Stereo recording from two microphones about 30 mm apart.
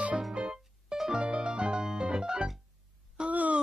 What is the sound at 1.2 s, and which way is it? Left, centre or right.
Music, right.